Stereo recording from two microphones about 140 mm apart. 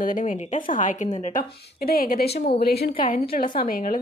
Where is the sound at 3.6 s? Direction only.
75° left (ahead or behind).